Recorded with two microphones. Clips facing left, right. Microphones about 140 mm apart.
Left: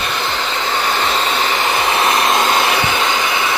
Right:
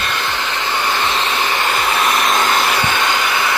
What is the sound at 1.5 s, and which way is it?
Hair dryer, 15° left (ahead or behind).